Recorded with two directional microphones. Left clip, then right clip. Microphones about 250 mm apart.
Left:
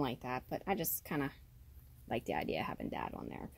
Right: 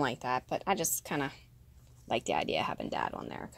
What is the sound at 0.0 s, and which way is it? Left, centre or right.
Speech, centre.